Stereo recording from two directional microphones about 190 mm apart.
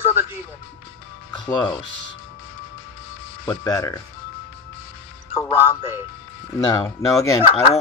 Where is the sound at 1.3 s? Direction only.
25° left (ahead or behind).